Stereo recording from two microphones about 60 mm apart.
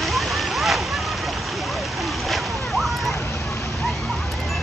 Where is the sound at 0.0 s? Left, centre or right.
Centre.